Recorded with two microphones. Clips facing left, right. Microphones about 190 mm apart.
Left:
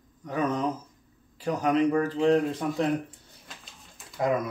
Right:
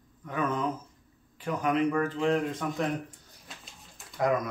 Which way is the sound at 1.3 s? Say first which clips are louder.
Left 3 dB; 35° left (ahead or behind).